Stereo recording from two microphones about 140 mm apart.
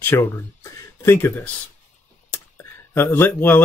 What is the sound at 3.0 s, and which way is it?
Speech, 15° left (ahead or behind).